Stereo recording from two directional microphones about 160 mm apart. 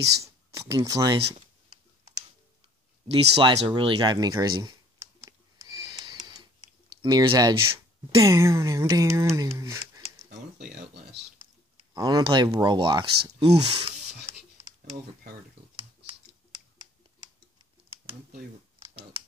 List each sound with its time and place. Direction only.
0.0 s speech: 20° right (ahead or behind)
3.1 s a sound: 30° right (ahead or behind)
7.0 s speech: 25° right (ahead or behind)
8.2 s speech: 20° right (ahead or behind)
11.9 s speech: 25° right (ahead or behind); by 13.7 s 40° right (ahead or behind)